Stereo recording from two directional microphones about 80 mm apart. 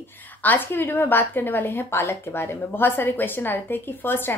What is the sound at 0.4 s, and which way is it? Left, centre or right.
A woman's voice, left.